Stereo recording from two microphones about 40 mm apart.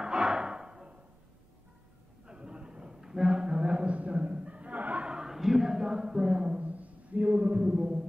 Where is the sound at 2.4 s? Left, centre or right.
Right.